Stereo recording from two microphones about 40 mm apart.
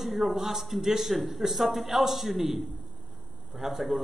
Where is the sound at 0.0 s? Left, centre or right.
Centre.